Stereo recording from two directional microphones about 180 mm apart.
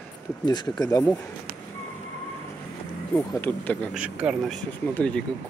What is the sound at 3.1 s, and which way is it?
Speech, 10° left (ahead or behind).